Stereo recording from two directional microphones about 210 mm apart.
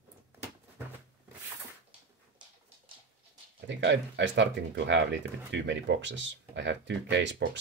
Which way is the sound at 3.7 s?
60° right (ahead or behind).